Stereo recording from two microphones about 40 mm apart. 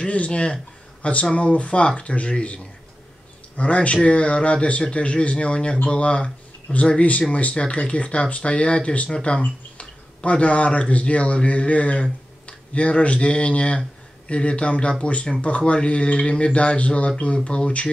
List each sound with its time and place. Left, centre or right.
0.0 s speech: left